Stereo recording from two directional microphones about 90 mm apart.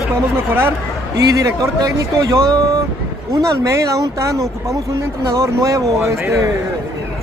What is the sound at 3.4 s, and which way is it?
Speech, 35° right (ahead or behind).